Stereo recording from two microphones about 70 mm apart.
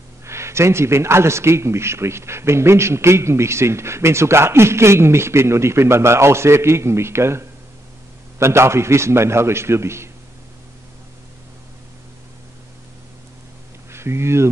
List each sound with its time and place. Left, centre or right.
0.2 s speech: right
13.9 s speech: right